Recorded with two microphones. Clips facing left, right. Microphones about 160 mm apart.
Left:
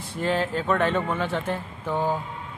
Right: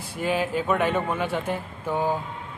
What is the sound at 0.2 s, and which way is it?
A man's voice, 10° right (ahead or behind).